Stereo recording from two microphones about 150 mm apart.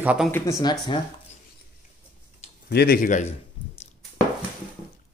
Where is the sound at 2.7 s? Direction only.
90° left; by 3.2 s 65° left (ahead or behind).